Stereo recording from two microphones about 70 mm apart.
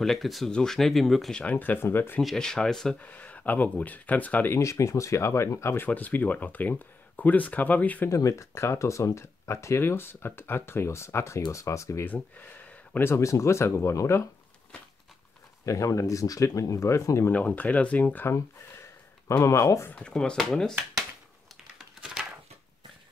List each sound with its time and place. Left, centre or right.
0.0 s speech: centre
1.3 s speech: left
2.3 s speech: centre
3.0 s speech: left
4.5 s speech: left
5.9 s speech: left
8.1 s speech: left
12.1 s speech: left
13.1 s speech: left
15.6 s speech: left
17.3 s speech: left
18.2 s a sound: left
19.4 s speech: left
19.9 s speech: centre